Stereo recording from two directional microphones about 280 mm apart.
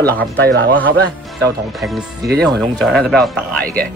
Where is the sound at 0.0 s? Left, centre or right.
Right.